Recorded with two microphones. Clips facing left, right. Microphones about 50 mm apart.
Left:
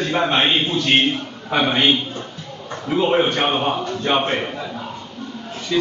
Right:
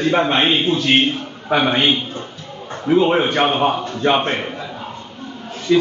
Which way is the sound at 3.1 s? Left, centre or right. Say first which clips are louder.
Right 2 dB; centre.